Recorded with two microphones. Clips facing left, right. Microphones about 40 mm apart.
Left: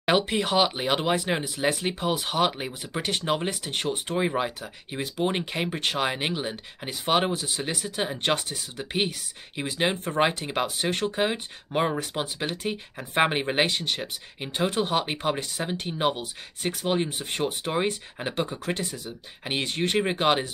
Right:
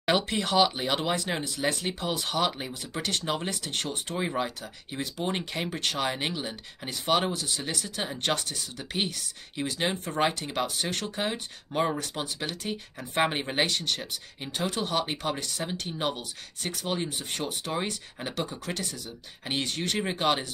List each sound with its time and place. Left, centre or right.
0.0 s speech: centre